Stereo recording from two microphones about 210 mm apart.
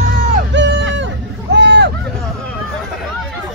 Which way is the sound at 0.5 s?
60° right (ahead or behind).